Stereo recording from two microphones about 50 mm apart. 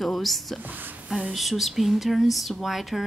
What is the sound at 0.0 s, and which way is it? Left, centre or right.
Speech, centre.